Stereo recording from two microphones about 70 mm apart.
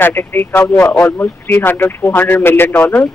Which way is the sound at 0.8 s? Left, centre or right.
Centre.